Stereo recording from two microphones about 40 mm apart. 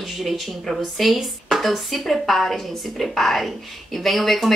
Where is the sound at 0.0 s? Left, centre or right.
Centre.